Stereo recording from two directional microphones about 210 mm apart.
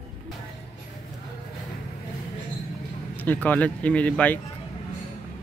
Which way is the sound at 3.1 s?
10° left (ahead or behind).